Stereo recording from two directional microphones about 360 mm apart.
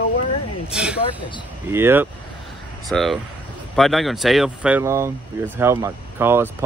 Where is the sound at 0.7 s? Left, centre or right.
Centre.